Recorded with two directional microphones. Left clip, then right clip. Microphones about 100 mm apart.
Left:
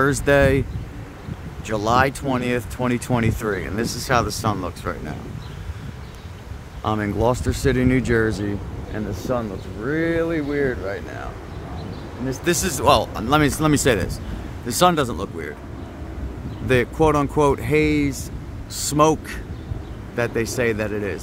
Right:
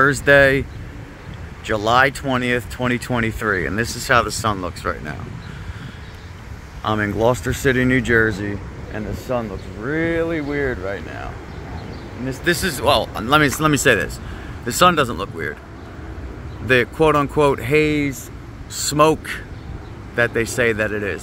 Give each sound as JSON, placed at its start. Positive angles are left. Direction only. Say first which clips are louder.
{"t": 0.0, "sound": "speech", "louder": "right 4 dB", "side_deg": 15}
{"t": 1.9, "sound": "speech", "louder": "right 3 dB", "side_deg": 15}
{"t": 3.4, "sound": "speech", "louder": "right 4 dB", "side_deg": 10}
{"t": 6.8, "sound": "speech", "louder": "right 3 dB", "side_deg": 0}
{"t": 8.5, "sound": "speech", "louder": "even", "side_deg": 35}
{"t": 10.5, "sound": "speech", "louder": "even", "side_deg": 35}
{"t": 12.4, "sound": "speech", "louder": "even", "side_deg": 25}
{"t": 16.6, "sound": "speech", "louder": "right 3 dB", "side_deg": 10}
{"t": 18.9, "sound": "speech", "louder": "right 2 dB", "side_deg": 5}